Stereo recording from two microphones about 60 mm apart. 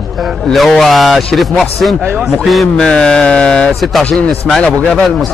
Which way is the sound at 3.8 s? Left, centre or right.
Centre.